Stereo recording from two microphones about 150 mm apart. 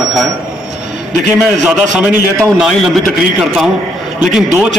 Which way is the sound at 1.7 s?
5° right (ahead or behind).